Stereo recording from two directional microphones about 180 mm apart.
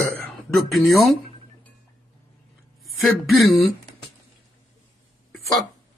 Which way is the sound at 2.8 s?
Centre (ahead or behind).